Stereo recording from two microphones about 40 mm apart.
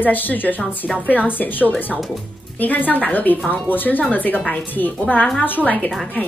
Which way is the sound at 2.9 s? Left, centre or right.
Left.